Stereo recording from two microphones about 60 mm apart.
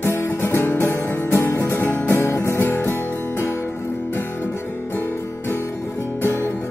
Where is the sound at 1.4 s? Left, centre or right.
Left.